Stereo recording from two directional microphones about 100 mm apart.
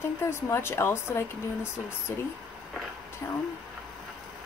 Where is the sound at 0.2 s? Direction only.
25° left (ahead or behind).